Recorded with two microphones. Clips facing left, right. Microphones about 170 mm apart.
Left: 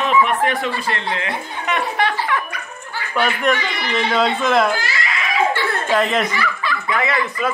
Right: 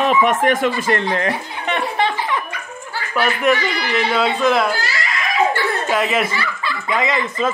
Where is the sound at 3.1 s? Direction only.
5° right (ahead or behind).